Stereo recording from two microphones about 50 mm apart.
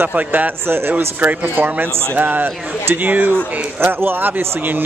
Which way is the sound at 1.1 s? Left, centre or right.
Right.